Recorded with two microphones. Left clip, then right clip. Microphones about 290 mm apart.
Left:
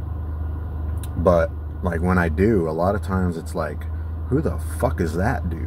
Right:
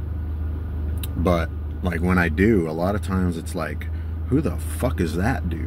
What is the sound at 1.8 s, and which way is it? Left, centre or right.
Speech, centre.